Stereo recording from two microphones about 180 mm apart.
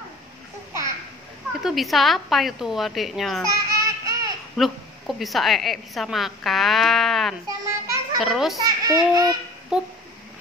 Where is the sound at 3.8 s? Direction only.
20° right (ahead or behind).